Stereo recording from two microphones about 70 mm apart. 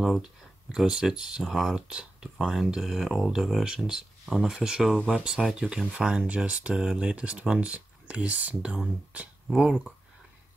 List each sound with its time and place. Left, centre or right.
0.0 s speech: centre